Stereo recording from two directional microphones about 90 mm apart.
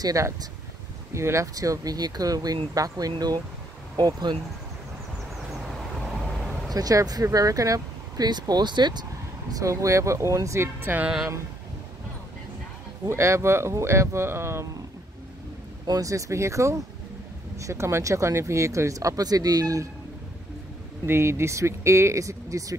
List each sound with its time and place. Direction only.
0.0 s speech: 40° right (ahead or behind)
5.5 s vehicle: centre (ahead or behind)
6.7 s speech: 45° right (ahead or behind)
9.5 s speech: 35° right (ahead or behind)
13.1 s speech: 30° right (ahead or behind)
15.9 s speech: 40° right (ahead or behind)
21.0 s speech: 30° right (ahead or behind)